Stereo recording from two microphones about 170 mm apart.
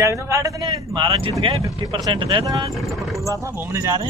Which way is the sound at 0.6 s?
30° right (ahead or behind).